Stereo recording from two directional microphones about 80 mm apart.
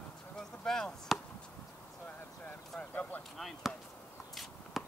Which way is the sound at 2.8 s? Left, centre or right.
Centre.